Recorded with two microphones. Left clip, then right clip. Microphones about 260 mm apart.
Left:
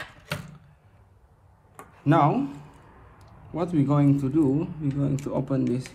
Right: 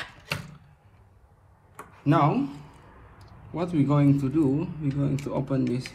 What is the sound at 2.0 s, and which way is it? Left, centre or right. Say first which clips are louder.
A man's voice: left 2 dB; centre.